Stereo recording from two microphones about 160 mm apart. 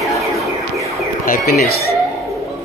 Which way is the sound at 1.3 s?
60° left (ahead or behind).